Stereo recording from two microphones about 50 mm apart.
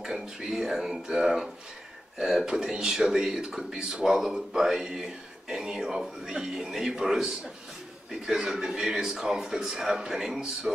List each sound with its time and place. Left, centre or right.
0.0 s speech: centre